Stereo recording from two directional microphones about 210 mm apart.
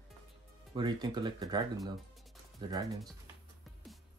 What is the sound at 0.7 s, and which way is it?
Speech, 20° right (ahead or behind).